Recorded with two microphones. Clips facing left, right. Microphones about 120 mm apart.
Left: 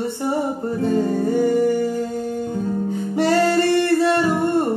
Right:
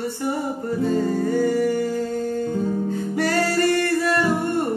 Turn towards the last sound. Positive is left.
turn(degrees=25)  # may be behind; listen again after turning